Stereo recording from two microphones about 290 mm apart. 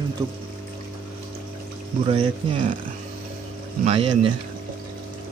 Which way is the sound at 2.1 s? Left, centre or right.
Centre.